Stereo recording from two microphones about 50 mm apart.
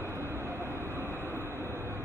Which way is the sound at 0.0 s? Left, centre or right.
Right.